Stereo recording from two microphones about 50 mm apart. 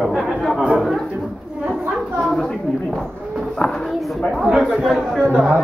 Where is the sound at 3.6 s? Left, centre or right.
Centre.